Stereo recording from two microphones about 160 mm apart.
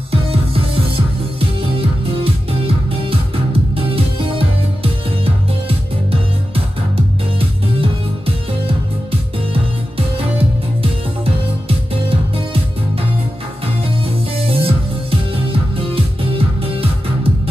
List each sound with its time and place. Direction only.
0.1 s music: 35° right (ahead or behind)
9.5 s music: 35° right (ahead or behind)
14.0 s music: 35° right (ahead or behind)